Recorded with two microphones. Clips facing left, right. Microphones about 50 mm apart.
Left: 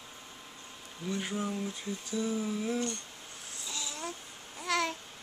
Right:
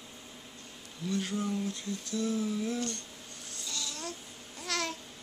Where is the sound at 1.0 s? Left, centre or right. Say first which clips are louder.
Right 1 dB; centre.